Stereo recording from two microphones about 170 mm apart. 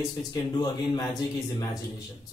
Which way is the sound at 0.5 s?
25° left (ahead or behind).